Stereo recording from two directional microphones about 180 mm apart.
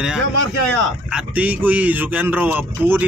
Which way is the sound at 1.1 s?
10° right (ahead or behind).